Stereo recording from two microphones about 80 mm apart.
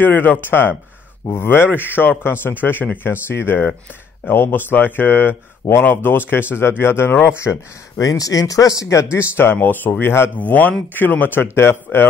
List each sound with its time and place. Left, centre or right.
0.0 s a man's voice: left
8.0 s a man's voice: left